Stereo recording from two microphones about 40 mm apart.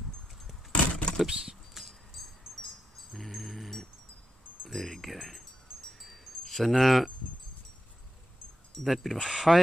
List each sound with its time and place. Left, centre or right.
0.7 s keys jangling: left
1.2 s a sound: centre
1.7 s a sound: centre
4.6 s speech: centre
5.9 s wind chime: centre
8.8 s speech: centre